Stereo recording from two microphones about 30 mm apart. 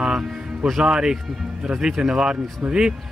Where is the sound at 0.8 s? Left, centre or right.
Right.